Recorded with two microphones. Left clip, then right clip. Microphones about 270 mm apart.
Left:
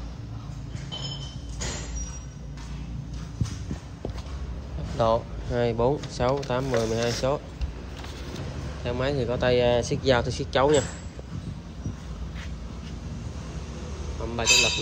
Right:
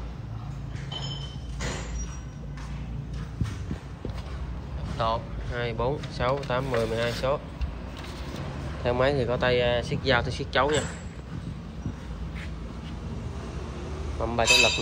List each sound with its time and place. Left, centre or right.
4.9 s speech: left
8.8 s speech: centre
14.2 s a man's voice: centre